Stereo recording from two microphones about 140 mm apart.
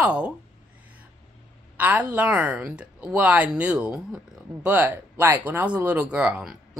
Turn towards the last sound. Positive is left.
turn(degrees=-5)  # may be behind; listen again after turning